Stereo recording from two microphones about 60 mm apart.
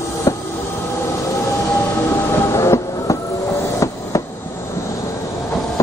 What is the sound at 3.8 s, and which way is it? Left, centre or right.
Train, left.